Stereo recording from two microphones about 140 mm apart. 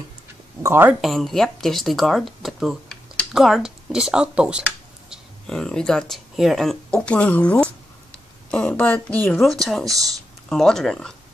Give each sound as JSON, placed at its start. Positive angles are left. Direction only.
{"t": 0.6, "sound": "speech", "side_deg": -15}
{"t": 1.0, "sound": "speech", "side_deg": 0}
{"t": 5.1, "sound": "a woman's voice", "side_deg": 5}